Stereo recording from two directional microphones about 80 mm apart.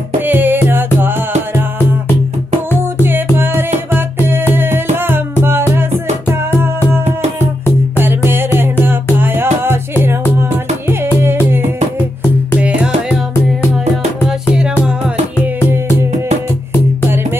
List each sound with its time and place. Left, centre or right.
0.2 s music: right
3.0 s music: right
8.0 s music: right
10.9 s music: right
12.5 s music: centre